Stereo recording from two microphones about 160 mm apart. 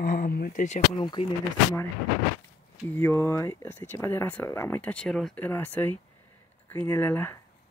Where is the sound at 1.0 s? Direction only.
30° left (ahead or behind).